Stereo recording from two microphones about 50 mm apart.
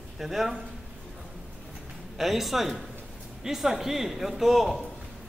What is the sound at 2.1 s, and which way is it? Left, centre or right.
Speech, centre.